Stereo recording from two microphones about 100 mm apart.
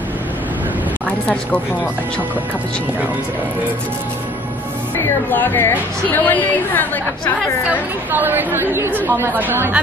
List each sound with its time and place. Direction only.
1.2 s speech: 10° left (ahead or behind)
4.9 s a woman's voice: 20° left (ahead or behind)
8.1 s speech: 20° right (ahead or behind)